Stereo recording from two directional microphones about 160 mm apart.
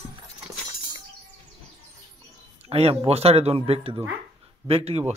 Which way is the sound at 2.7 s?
40° right (ahead or behind).